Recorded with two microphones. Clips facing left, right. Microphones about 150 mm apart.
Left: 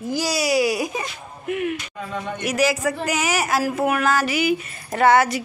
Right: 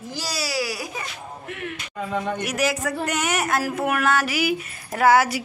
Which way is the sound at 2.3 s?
Centre (ahead or behind).